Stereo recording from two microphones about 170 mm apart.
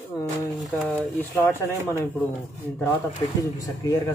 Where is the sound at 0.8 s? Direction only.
10° left (ahead or behind).